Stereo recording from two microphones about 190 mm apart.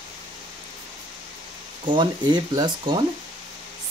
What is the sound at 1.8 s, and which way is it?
Speech, 25° right (ahead or behind).